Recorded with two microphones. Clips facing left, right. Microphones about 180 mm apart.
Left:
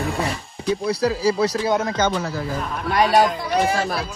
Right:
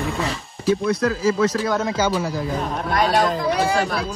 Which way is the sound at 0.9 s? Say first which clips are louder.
Even; 35° left (ahead or behind).